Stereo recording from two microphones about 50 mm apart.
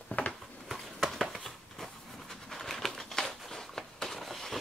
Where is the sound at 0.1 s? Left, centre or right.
Left.